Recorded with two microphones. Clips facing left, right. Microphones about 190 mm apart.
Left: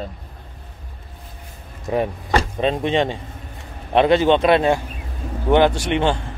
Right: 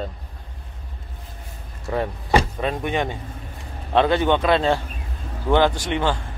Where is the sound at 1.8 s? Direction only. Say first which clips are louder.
Left 3 dB; 20° left (ahead or behind).